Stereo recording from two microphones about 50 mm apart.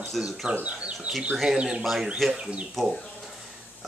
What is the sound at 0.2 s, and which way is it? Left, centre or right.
Speech, centre.